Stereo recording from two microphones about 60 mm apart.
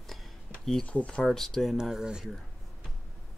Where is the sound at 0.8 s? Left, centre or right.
Left.